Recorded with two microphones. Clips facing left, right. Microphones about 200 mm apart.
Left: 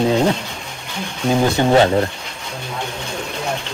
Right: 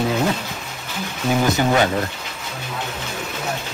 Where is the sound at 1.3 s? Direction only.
30° left (ahead or behind).